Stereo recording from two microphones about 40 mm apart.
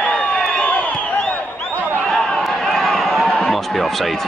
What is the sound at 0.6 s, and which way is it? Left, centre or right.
Crowd, left.